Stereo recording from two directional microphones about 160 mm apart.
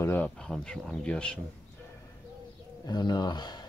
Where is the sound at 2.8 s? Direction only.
25° left (ahead or behind).